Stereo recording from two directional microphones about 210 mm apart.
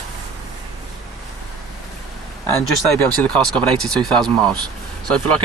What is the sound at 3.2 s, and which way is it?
Speech, 5° left (ahead or behind).